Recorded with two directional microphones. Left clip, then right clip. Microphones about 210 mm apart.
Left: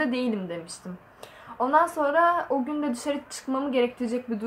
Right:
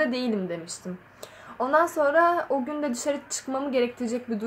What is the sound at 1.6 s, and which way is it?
A woman's voice, 15° right (ahead or behind).